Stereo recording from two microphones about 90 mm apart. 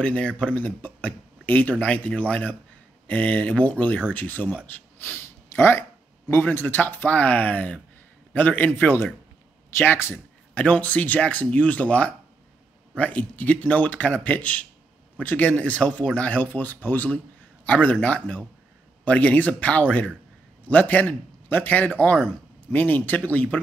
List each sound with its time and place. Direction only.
0.0 s speech: 10° left (ahead or behind)
4.6 s a sound: 20° left (ahead or behind)
5.6 s speech: 25° left (ahead or behind)
10.5 s speech: 15° left (ahead or behind)